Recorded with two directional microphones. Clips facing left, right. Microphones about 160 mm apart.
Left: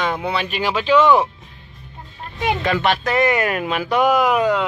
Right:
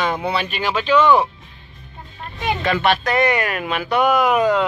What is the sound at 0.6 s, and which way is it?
Speech, 10° left (ahead or behind).